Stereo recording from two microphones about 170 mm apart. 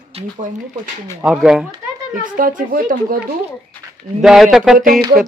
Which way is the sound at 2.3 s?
55° right (ahead or behind).